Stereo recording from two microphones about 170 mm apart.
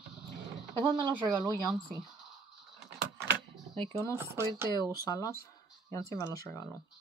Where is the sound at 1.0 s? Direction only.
20° right (ahead or behind).